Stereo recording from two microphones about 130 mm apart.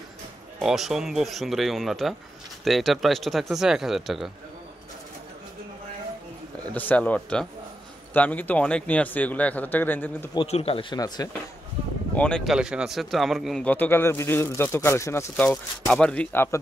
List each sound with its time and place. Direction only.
0.6 s speech: 5° right (ahead or behind)
6.7 s speech: 10° left (ahead or behind)
10.4 s speech: 50° left (ahead or behind)
11.2 s speech: 30° left (ahead or behind)
12.2 s speech: 5° left (ahead or behind)
12.5 s speech: 5° right (ahead or behind)
13.7 s speech: 15° left (ahead or behind)
15.9 s speech: 10° left (ahead or behind)